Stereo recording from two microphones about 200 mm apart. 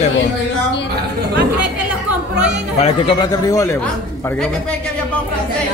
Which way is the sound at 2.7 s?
30° left (ahead or behind).